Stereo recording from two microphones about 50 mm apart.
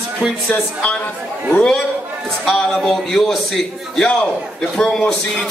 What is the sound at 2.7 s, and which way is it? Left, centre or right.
Speech, centre.